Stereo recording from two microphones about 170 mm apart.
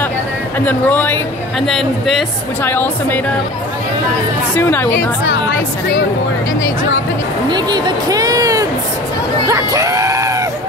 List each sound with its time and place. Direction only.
0.6 s a woman's voice: 10° left (ahead or behind)
4.6 s a woman's voice: 10° left (ahead or behind)
7.4 s speech: 25° right (ahead or behind)
9.5 s screaming: 20° right (ahead or behind)